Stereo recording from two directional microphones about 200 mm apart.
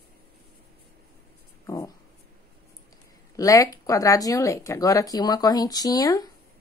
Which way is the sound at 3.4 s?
15° left (ahead or behind).